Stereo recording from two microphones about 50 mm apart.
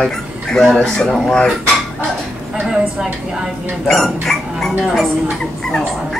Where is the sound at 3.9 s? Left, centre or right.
Centre.